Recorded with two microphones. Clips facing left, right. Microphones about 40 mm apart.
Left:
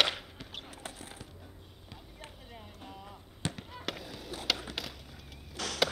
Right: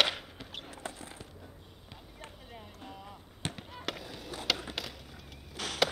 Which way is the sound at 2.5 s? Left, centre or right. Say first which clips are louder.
Right 1 dB; centre.